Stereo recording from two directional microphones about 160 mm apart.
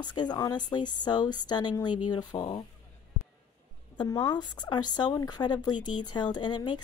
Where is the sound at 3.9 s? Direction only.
25° left (ahead or behind).